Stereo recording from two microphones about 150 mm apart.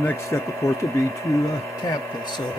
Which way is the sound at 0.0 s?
15° left (ahead or behind).